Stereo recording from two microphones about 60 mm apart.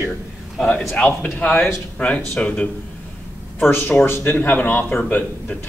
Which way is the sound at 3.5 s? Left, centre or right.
Left.